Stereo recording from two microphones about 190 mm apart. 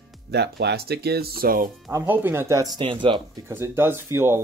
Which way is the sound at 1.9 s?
15° right (ahead or behind).